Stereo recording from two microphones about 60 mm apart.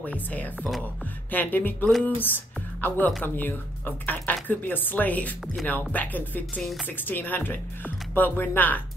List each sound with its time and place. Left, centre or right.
0.0 s speech: left